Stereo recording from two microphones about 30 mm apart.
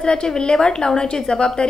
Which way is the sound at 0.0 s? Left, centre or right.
Left.